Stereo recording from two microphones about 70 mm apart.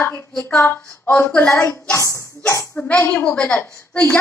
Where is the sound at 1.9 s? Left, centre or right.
Left.